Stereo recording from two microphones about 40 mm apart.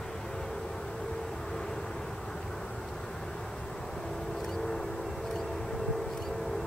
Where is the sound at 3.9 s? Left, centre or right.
Centre.